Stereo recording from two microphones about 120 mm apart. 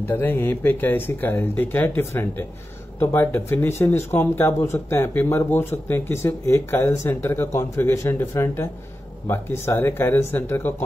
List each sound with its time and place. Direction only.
0.0 s speech: 15° left (ahead or behind)